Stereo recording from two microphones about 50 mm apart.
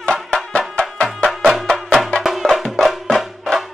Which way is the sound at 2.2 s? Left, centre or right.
Centre.